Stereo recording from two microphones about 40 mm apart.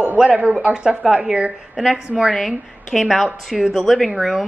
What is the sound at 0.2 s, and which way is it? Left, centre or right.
Speech, right.